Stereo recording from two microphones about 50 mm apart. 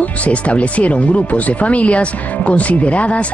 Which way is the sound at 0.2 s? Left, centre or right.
Left.